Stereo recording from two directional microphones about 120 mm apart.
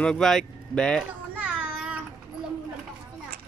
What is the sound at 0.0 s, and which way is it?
Speech, 5° left (ahead or behind).